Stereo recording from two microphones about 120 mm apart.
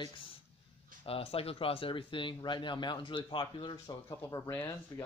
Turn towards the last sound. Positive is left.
turn(degrees=15)  # may be behind; listen again after turning